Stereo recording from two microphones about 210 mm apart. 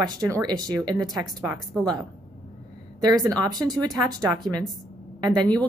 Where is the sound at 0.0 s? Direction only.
20° right (ahead or behind).